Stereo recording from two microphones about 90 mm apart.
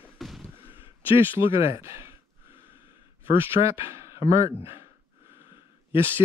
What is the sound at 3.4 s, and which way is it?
Speech, 30° right (ahead or behind).